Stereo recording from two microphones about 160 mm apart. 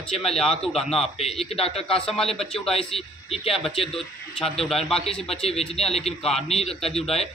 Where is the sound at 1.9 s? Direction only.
5° left (ahead or behind).